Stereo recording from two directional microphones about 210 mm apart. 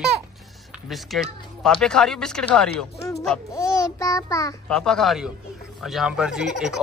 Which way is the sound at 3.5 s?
15° left (ahead or behind).